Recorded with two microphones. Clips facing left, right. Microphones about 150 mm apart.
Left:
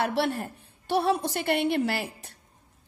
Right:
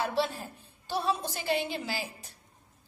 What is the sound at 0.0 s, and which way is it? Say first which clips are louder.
A woman's voice: left 4 dB; 75° left (ahead or behind).